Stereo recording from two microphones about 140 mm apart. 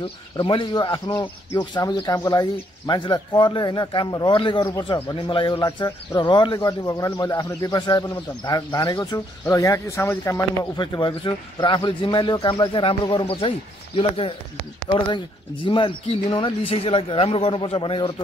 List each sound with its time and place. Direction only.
0.0 s speech: 40° left (ahead or behind)